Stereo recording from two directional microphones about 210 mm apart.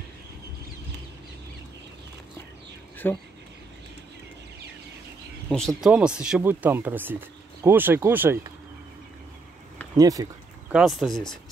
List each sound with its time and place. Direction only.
3.0 s speech: 10° left (ahead or behind)
5.8 s speech: 5° right (ahead or behind)
9.9 s speech: 15° right (ahead or behind)
10.7 s speech: centre (ahead or behind)